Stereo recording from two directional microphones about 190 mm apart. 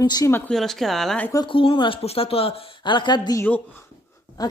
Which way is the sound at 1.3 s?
25° left (ahead or behind).